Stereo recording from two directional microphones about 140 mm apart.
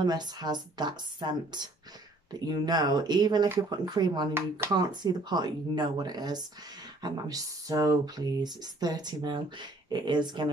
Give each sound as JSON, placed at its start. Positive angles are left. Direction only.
{"t": 0.0, "sound": "speech", "side_deg": -30}
{"t": 4.3, "sound": "speech", "side_deg": -15}
{"t": 4.7, "sound": "speech", "side_deg": -30}